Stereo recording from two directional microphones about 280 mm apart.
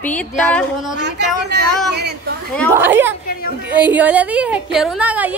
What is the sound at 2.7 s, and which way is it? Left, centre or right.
A woman's voice, centre.